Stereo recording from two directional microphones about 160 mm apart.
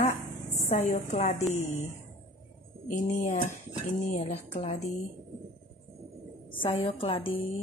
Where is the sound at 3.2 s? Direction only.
55° left (ahead or behind).